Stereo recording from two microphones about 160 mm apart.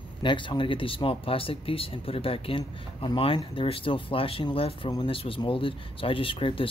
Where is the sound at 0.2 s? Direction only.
30° left (ahead or behind).